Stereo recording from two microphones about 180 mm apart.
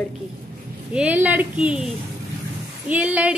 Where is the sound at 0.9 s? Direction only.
10° right (ahead or behind).